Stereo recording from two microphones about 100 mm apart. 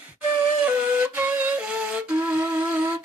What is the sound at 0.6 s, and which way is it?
Flute, 20° right (ahead or behind).